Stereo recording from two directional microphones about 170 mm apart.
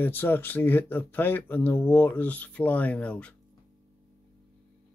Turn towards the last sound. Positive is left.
turn(degrees=5)  # may be behind; listen again after turning